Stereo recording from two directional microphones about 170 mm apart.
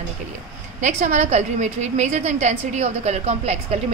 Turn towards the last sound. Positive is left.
turn(degrees=-40)  # may be behind; listen again after turning